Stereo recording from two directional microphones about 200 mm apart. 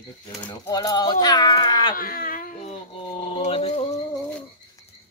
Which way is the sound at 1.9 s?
45° left (ahead or behind).